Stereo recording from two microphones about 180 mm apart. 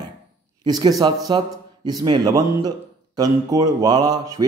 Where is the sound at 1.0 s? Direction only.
20° right (ahead or behind).